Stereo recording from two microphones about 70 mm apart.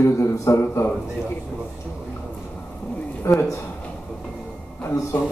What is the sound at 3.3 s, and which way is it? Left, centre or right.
Speech, left.